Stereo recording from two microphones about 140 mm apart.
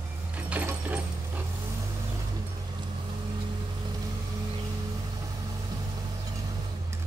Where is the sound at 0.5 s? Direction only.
10° right (ahead or behind).